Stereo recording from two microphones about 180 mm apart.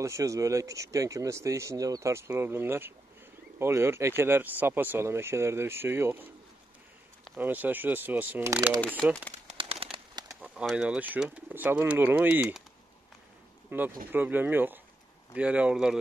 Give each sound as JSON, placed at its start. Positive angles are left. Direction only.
{"t": 0.0, "sound": "speech", "side_deg": -15}
{"t": 7.3, "sound": "speech", "side_deg": -10}
{"t": 8.8, "sound": "speech", "side_deg": 5}
{"t": 9.5, "sound": "bird", "side_deg": -30}
{"t": 10.4, "sound": "speech", "side_deg": -5}
{"t": 13.7, "sound": "speech", "side_deg": -10}